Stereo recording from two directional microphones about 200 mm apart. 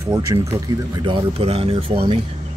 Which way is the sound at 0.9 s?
25° right (ahead or behind).